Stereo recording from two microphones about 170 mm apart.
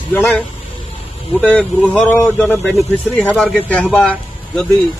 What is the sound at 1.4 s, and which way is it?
A man's voice, 10° left (ahead or behind).